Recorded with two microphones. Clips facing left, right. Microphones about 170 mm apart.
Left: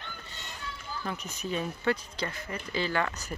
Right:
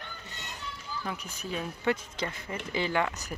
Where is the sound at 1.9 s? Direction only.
20° right (ahead or behind).